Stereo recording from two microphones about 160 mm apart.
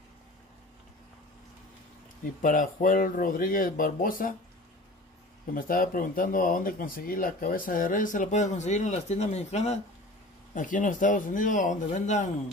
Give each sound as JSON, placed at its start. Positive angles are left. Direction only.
{"t": 2.4, "sound": "speech", "side_deg": 60}
{"t": 5.5, "sound": "speech", "side_deg": 60}
{"t": 10.5, "sound": "speech", "side_deg": 55}